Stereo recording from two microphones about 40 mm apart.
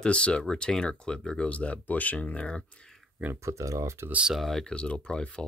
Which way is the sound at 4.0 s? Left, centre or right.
Right.